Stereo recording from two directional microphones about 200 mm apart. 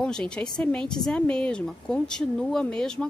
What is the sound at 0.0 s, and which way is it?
A woman's voice, 5° left (ahead or behind).